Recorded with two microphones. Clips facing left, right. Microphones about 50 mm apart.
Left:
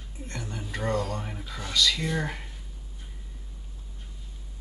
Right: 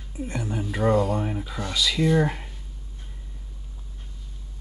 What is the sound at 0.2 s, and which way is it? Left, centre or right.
Speech, centre.